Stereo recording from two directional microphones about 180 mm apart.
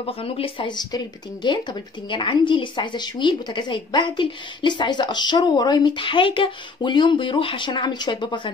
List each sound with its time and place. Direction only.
0.0 s speech: 30° left (ahead or behind)